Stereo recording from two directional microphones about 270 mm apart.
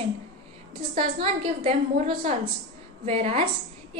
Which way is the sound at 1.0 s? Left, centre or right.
Right.